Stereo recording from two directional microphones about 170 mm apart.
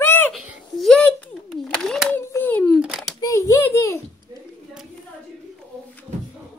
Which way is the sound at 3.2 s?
20° left (ahead or behind).